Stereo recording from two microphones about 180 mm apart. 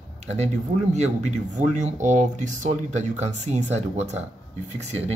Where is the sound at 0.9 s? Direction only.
40° right (ahead or behind).